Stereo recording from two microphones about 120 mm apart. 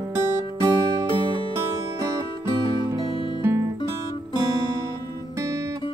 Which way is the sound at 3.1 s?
45° left (ahead or behind).